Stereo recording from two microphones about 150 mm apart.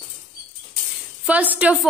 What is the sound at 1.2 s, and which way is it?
Speech, 10° right (ahead or behind).